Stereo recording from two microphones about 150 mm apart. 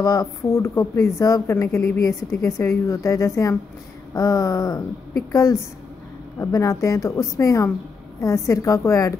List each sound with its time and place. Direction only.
0.0 s a woman's voice: 25° left (ahead or behind)